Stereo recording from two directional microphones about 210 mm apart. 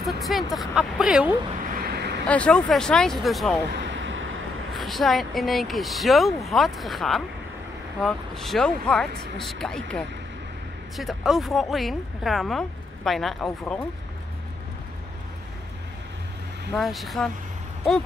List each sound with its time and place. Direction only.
0.0 s speech: centre (ahead or behind)
1.9 s vehicle: 50° right (ahead or behind)
2.2 s speech: 5° left (ahead or behind)
3.7 s vehicle: 60° right (ahead or behind)
4.7 s speech: centre (ahead or behind)
16.7 s speech: centre (ahead or behind)